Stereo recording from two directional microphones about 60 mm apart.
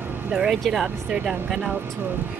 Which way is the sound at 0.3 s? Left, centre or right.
Centre.